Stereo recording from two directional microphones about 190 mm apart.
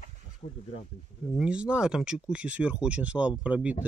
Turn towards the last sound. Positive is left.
turn(degrees=-5)  # may be behind; listen again after turning